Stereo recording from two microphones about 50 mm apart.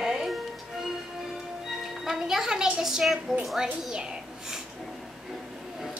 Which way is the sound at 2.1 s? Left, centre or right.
Centre.